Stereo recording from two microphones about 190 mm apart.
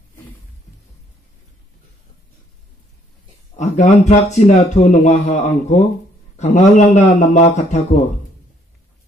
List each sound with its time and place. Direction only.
3.5 s speech: 35° left (ahead or behind)